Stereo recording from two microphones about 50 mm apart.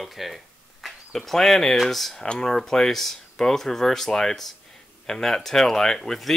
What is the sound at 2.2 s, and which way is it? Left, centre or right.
Speech, centre.